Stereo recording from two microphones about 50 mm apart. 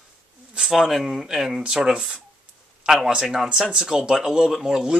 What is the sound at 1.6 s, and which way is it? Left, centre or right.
Speech, centre.